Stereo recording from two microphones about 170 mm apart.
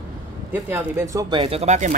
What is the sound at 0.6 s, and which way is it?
Speech, 15° right (ahead or behind).